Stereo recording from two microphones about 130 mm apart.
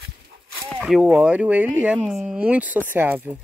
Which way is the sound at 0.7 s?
5° right (ahead or behind).